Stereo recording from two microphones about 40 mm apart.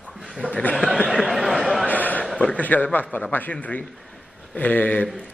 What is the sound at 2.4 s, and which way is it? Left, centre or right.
Speech, left.